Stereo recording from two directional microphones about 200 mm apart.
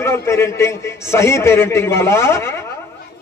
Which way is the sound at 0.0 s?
15° left (ahead or behind).